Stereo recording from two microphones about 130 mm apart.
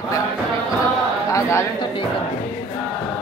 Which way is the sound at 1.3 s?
25° left (ahead or behind).